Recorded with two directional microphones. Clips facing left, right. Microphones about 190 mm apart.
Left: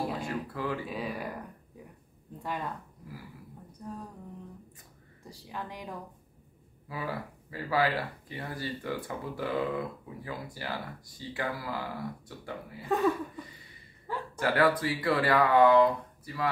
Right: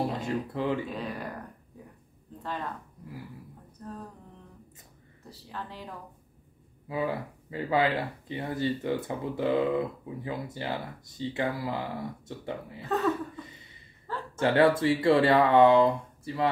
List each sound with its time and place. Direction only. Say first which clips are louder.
0.2 s a sound: right 4 dB; 20° right (ahead or behind)
0.8 s speech: even; 5° left (ahead or behind)
2.4 s speech: even; 10° left (ahead or behind)
3.8 s speech: even; 10° left (ahead or behind)
5.3 s speech: even; 15° left (ahead or behind)
6.9 s speech: right 6 dB; 20° right (ahead or behind)
12.8 s speech: left 1 dB; 10° left (ahead or behind)
14.1 s a sound: even; 10° left (ahead or behind)
14.4 s speech: right 4 dB; 25° right (ahead or behind)